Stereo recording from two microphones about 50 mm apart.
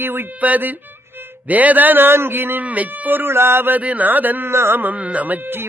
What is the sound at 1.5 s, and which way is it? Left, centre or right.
Speech, right.